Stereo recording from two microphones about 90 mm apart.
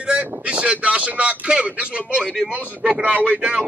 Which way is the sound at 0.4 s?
15° right (ahead or behind).